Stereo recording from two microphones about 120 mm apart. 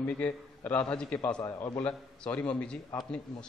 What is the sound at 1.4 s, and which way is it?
Speech, 30° left (ahead or behind).